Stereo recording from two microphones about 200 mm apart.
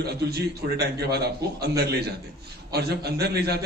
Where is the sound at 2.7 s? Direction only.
55° right (ahead or behind).